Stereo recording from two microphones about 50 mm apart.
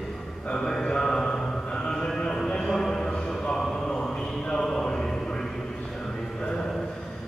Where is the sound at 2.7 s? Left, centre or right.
Centre.